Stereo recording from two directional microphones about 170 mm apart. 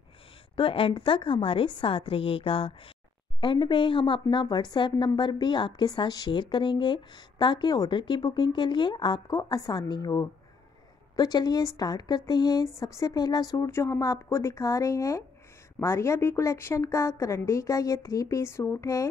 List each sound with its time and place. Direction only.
0.6 s a woman's voice: 30° left (ahead or behind)